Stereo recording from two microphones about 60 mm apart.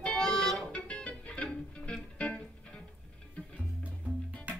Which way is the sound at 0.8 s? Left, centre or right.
Centre.